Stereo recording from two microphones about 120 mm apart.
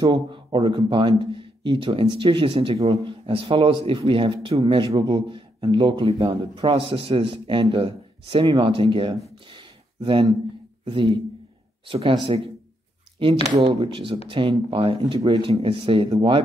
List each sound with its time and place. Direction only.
0.0 s speech: 40° right (ahead or behind)
10.9 s speech: 45° right (ahead or behind)
13.6 s speech: 45° right (ahead or behind)